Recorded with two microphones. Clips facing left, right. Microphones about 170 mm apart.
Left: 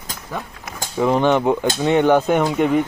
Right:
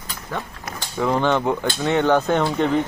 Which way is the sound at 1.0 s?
15° left (ahead or behind).